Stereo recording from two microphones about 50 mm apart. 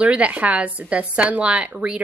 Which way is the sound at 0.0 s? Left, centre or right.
Right.